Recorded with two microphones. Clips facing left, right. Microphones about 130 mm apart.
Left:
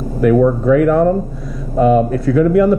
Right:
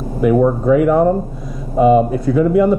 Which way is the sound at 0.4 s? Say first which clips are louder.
Even; 20° right (ahead or behind).